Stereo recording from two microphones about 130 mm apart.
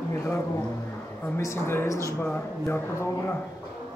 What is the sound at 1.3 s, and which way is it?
Speech, 20° left (ahead or behind).